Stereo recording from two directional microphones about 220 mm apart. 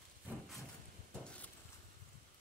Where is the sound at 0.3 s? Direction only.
10° right (ahead or behind).